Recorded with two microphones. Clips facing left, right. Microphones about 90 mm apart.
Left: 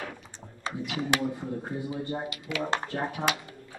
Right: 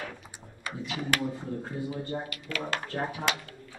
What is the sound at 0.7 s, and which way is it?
Computer keyboard, 25° left (ahead or behind).